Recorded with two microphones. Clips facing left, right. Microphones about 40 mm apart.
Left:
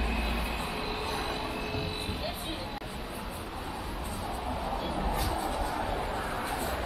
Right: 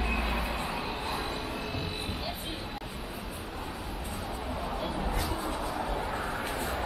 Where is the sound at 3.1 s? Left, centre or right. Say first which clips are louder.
Left 1 dB; centre.